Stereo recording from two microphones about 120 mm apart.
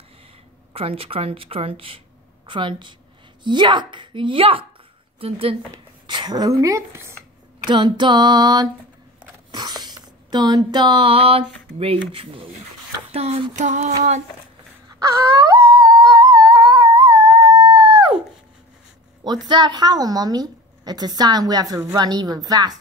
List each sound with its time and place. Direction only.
0.7 s speech: 50° right (ahead or behind)
6.0 s speech: 40° right (ahead or behind); by 7.2 s 20° right (ahead or behind)
7.6 s a woman's voice: 40° right (ahead or behind)
9.5 s a sound: 35° right (ahead or behind)
9.8 s speech: 35° right (ahead or behind)
13.1 s a sound: 60° right (ahead or behind)
13.6 s female singing: 80° right
15.0 s music: 25° right (ahead or behind)
17.0 s howl: 25° right (ahead or behind)
19.2 s a woman's voice: 40° right (ahead or behind)